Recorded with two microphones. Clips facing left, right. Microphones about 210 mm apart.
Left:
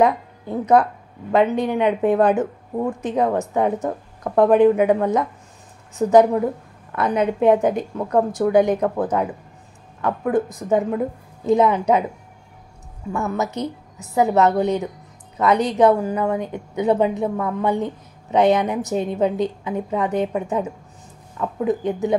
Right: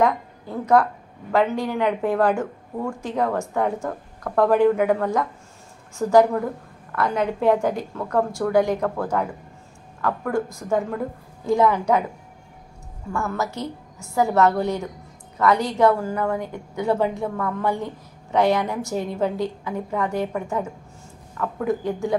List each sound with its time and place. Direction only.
0.0 s a woman's voice: 20° left (ahead or behind)
13.1 s a woman's voice: 20° left (ahead or behind)